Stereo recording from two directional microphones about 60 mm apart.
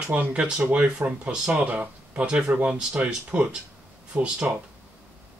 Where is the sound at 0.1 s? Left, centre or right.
Right.